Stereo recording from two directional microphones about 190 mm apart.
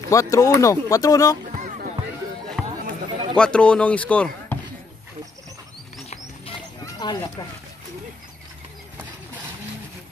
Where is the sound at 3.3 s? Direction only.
5° left (ahead or behind).